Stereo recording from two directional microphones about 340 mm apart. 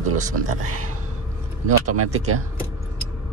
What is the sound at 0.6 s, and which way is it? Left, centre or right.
Speech, right.